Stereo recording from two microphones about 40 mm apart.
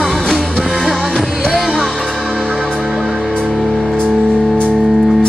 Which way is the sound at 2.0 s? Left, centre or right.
Centre.